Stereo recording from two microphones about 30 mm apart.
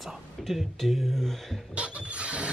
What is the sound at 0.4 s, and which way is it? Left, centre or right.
Speech, centre.